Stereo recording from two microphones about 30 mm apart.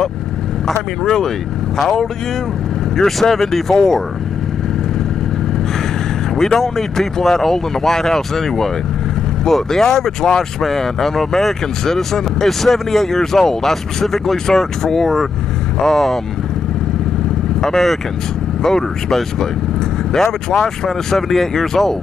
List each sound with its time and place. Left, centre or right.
1.0 s speech: centre
6.3 s speech: centre
9.7 s speech: centre
17.6 s speech: centre